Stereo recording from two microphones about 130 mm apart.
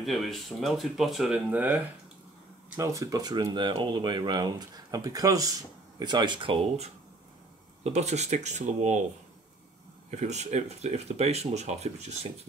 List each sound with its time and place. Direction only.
0.0 s speech: centre (ahead or behind)
1.5 s speech: 10° right (ahead or behind)
2.8 s speech: 25° right (ahead or behind); by 6.9 s 40° right (ahead or behind)
7.8 s speech: 60° right (ahead or behind)
10.1 s speech: 65° right (ahead or behind)